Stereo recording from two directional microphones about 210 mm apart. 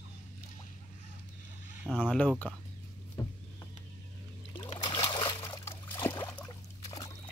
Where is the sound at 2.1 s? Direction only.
5° left (ahead or behind).